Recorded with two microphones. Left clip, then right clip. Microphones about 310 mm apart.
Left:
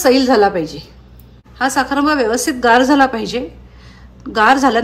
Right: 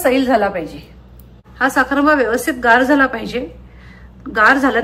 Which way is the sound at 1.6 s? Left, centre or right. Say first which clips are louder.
Right 1 dB; centre.